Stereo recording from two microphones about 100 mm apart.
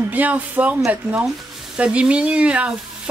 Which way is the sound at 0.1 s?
15° right (ahead or behind).